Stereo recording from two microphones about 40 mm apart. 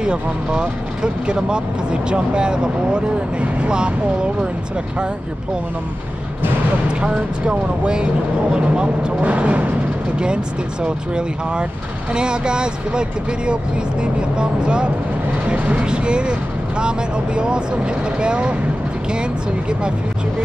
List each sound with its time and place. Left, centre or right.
0.0 s speech: right
6.9 s speech: right
14.4 s speech: right